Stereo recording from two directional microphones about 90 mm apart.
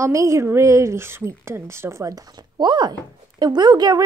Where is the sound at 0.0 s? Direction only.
35° right (ahead or behind).